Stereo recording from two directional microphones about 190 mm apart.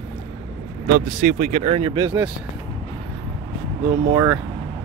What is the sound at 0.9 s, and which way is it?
Speech, 45° right (ahead or behind).